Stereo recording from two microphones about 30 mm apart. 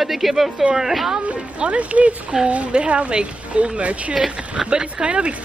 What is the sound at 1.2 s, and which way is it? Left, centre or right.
Speech, right.